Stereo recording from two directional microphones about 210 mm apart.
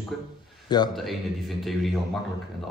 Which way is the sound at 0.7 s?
20° left (ahead or behind).